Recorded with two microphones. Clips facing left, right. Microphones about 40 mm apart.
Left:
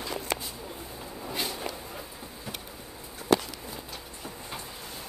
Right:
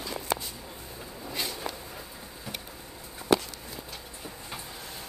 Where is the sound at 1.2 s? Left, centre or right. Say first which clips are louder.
Left 1 dB; centre.